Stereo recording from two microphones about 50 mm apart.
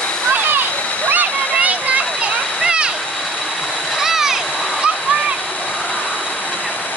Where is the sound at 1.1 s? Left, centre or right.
Right.